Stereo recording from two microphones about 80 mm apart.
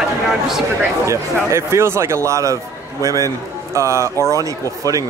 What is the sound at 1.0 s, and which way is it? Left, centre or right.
Speech, right.